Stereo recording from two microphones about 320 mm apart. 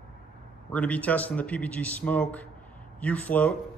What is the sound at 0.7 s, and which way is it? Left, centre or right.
Speech, centre.